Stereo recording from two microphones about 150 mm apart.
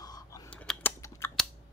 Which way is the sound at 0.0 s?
25° left (ahead or behind).